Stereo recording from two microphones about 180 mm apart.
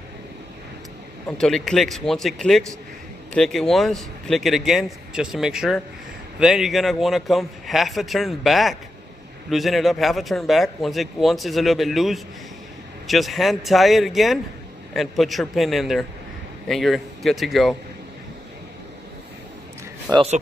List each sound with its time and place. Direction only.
1.4 s a man's voice: centre (ahead or behind)
20.1 s speech: 30° right (ahead or behind)